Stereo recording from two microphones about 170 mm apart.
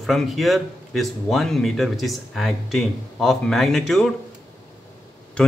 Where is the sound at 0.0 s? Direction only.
Centre (ahead or behind).